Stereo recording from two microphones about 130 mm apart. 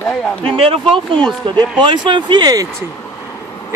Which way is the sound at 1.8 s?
40° right (ahead or behind).